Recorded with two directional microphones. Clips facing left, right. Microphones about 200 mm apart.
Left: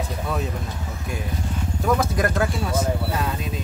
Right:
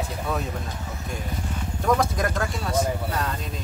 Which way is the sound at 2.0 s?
5° left (ahead or behind).